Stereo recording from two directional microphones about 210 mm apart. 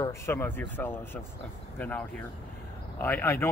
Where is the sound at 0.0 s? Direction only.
10° left (ahead or behind).